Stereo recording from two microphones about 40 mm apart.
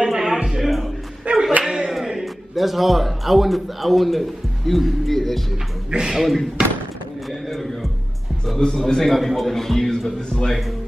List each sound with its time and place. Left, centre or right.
0.0 s music: centre
0.6 s music: centre
1.3 s clapping: right
1.6 s a sound: centre
2.2 s a man's voice: centre
5.9 s speech: centre
6.1 s a man's voice: centre
7.2 s a sound: centre
8.5 s a man's voice: centre